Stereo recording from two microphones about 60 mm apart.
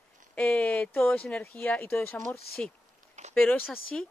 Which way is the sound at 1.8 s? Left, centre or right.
Left.